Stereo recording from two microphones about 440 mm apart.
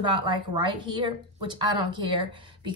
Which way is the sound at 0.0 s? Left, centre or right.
Centre.